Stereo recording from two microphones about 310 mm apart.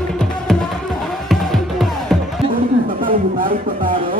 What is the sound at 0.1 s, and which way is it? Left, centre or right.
Music, centre.